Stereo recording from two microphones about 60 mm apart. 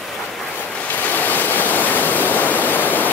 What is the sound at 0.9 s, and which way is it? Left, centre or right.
Waterfall, left.